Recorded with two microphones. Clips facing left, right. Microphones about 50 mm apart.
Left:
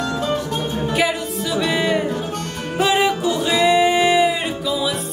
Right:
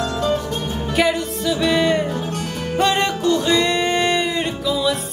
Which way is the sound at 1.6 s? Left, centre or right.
Centre.